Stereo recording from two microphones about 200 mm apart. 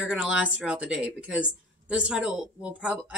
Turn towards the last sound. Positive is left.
turn(degrees=-5)  # may be behind; listen again after turning